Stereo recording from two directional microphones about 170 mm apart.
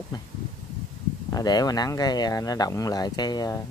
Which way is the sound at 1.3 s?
25° left (ahead or behind).